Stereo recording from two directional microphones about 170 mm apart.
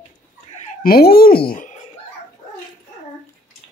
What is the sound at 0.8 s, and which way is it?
Speech, 65° left (ahead or behind).